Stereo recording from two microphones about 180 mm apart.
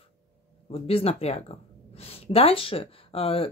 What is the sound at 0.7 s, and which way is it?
Speech, 35° left (ahead or behind).